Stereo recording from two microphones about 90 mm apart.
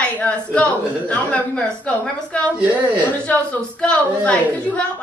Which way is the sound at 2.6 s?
15° right (ahead or behind).